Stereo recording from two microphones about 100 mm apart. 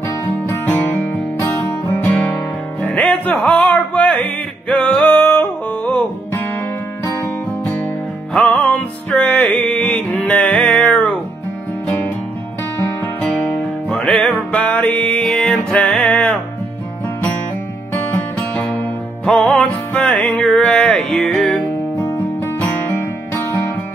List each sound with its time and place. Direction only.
0.5 s music: 20° left (ahead or behind)
3.3 s a sound: 10° left (ahead or behind)
5.1 s music: 20° left (ahead or behind)
8.3 s music: 10° left (ahead or behind)
13.8 s music: 5° left (ahead or behind)
19.2 s music: 5° left (ahead or behind); by 23.4 s 20° left (ahead or behind)